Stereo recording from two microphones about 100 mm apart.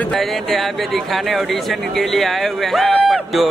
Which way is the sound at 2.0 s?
Centre (ahead or behind).